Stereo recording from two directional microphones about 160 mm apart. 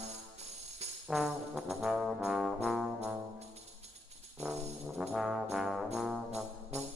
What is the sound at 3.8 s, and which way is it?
Music, 45° right (ahead or behind).